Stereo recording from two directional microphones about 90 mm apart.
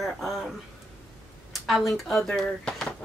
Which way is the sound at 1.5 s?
Centre (ahead or behind).